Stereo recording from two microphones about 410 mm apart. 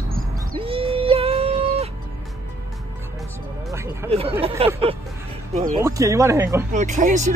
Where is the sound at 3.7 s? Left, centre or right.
Centre.